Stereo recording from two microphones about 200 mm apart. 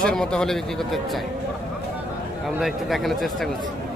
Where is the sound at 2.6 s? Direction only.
Centre (ahead or behind).